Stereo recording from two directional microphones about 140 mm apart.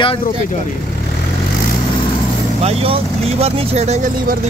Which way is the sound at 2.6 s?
45° right (ahead or behind).